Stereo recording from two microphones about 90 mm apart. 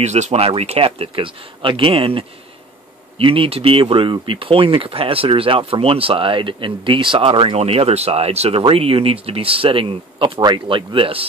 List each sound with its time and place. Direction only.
0.4 s speech: 90° right
10.4 s speech: 60° right (ahead or behind); by 11.2 s 80° right